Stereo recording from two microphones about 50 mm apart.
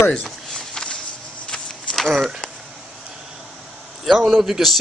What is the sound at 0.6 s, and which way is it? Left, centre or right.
Walk, centre.